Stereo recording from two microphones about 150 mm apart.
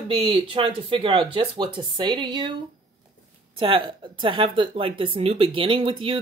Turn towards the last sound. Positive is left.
turn(degrees=-35)  # may be behind; listen again after turning